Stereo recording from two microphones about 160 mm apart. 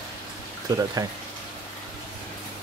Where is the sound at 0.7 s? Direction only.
25° right (ahead or behind).